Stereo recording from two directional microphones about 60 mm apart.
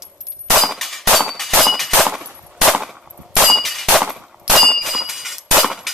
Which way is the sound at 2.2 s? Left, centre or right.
Centre.